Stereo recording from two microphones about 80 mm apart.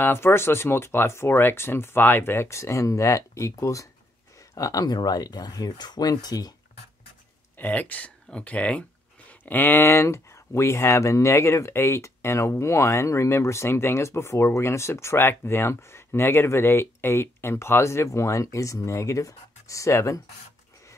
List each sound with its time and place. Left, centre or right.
0.0 s speech: left
7.5 s speech: left